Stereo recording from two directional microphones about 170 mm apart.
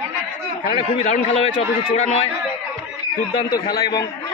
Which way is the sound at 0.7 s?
40° left (ahead or behind).